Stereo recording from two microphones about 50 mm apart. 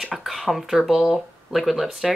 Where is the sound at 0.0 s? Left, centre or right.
Centre.